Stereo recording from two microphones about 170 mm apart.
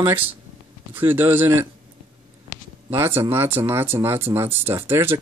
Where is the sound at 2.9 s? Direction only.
15° right (ahead or behind).